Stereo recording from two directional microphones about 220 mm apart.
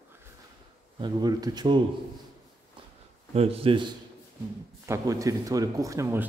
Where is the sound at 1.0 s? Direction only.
20° right (ahead or behind).